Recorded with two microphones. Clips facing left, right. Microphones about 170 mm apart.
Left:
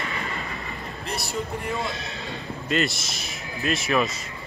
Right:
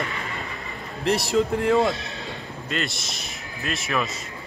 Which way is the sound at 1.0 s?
85° right.